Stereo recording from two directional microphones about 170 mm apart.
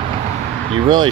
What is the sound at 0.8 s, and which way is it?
Speech, 25° right (ahead or behind).